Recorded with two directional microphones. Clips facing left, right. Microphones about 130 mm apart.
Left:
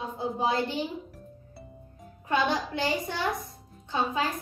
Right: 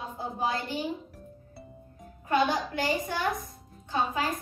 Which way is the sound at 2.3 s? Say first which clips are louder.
Right 1 dB; 25° left (ahead or behind).